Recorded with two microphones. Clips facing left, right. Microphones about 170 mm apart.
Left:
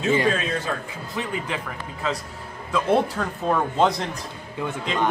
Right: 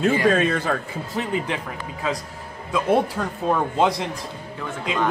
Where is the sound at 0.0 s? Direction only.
60° right (ahead or behind).